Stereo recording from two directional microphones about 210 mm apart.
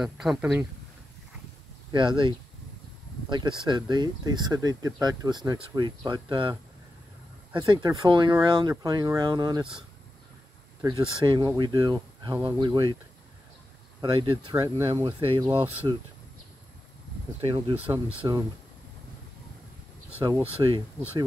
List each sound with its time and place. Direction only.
0.0 s speech: centre (ahead or behind)
1.9 s speech: 20° right (ahead or behind)
7.5 s speech: 20° right (ahead or behind)
14.0 s speech: 25° right (ahead or behind)
17.4 s speech: 25° right (ahead or behind)
20.2 s speech: 20° right (ahead or behind)